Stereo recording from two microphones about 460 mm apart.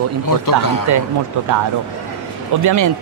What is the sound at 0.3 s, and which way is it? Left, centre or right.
Speech, left.